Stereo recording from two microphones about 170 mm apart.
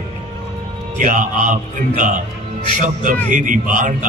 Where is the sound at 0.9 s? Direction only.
50° right (ahead or behind).